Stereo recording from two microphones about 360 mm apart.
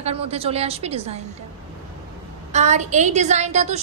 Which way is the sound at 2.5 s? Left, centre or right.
Centre.